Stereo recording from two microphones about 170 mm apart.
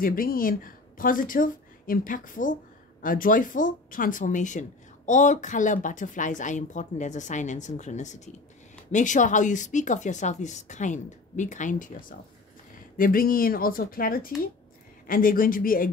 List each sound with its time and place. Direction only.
0.0 s a woman's voice: 55° left (ahead or behind)